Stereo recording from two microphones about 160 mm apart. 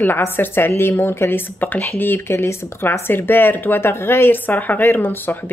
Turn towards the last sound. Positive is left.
turn(degrees=15)  # may be behind; listen again after turning